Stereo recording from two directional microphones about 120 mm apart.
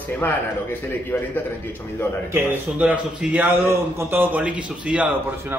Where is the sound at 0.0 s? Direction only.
15° left (ahead or behind).